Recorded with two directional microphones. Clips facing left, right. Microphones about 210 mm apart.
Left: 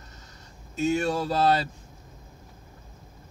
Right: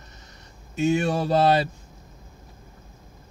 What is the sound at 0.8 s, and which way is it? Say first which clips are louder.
Speech: right 3 dB; 15° right (ahead or behind).